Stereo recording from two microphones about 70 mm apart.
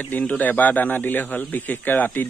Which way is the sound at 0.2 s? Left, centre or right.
Left.